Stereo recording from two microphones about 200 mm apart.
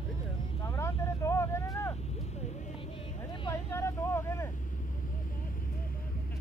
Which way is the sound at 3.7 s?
10° left (ahead or behind).